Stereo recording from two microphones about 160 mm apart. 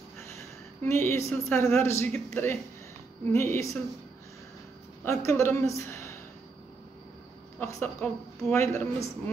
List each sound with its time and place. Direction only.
0.4 s a woman's voice: 15° left (ahead or behind)
5.0 s a woman's voice: 15° left (ahead or behind)
7.6 s a woman's voice: 15° left (ahead or behind)